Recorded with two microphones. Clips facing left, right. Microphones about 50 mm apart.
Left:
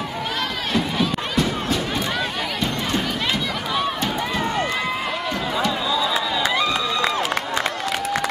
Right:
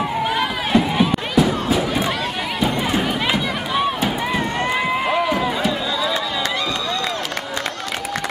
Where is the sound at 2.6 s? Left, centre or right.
Centre.